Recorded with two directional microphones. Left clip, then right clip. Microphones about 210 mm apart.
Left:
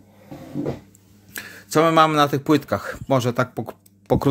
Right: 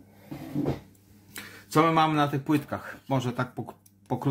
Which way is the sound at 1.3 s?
50° left (ahead or behind).